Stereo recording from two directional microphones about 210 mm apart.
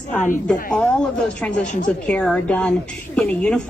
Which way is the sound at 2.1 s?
5° left (ahead or behind).